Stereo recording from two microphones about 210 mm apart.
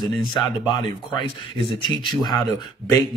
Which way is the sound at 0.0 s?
20° left (ahead or behind).